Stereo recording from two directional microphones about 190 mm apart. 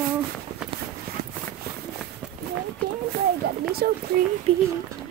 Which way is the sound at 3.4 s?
60° right (ahead or behind).